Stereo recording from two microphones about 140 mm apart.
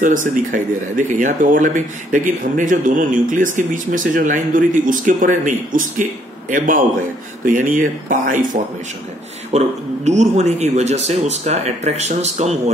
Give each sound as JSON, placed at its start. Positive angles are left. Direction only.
{"t": 0.5, "sound": "speech", "side_deg": -70}
{"t": 9.5, "sound": "speech", "side_deg": -55}